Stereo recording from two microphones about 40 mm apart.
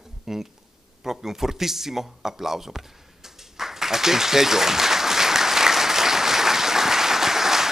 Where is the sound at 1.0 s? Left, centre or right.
Centre.